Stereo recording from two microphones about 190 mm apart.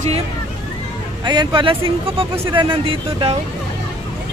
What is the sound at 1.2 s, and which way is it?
Speech, 25° right (ahead or behind).